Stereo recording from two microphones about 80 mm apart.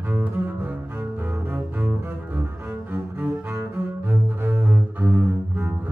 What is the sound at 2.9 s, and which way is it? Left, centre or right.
Cello, right.